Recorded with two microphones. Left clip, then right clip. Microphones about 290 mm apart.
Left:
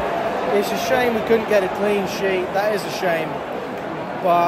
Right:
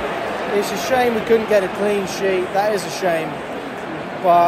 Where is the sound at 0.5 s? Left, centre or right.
Centre.